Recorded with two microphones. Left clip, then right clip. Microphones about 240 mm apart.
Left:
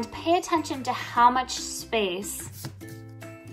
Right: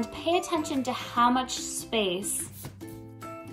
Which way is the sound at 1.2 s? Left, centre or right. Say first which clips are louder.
Left 6 dB; left.